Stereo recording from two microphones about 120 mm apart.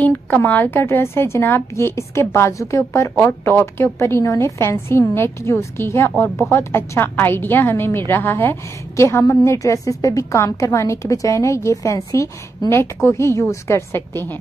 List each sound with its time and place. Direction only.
0.0 s a woman's voice: 15° left (ahead or behind)